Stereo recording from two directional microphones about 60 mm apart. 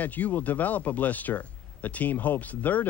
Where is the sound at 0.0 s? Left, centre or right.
Left.